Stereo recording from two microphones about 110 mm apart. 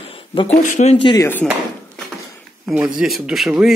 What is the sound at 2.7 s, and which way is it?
Speech, 10° right (ahead or behind).